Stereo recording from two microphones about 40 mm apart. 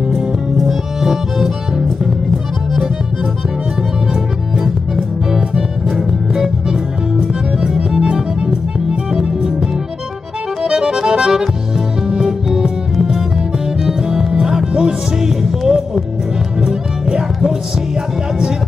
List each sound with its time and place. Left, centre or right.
0.1 s music: centre
4.6 s music: centre
14.0 s music: right